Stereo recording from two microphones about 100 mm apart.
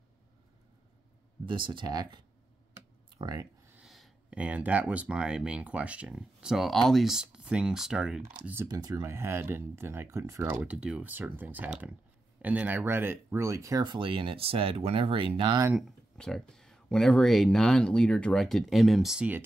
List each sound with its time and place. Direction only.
1.4 s speech: 55° right (ahead or behind)
3.8 s a sound: centre (ahead or behind)
4.3 s speech: 15° right (ahead or behind)
8.6 s speech: 40° right (ahead or behind)
9.0 s speech: 25° right (ahead or behind)
10.4 s speech: 20° right (ahead or behind); by 13.9 s 35° right (ahead or behind)
13.9 s speech: 55° right (ahead or behind)
16.2 s speech: 5° left (ahead or behind)